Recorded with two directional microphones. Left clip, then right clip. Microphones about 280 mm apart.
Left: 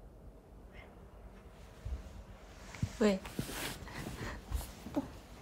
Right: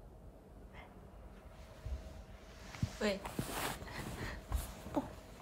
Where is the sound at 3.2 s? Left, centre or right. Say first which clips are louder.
Right 1 dB; right.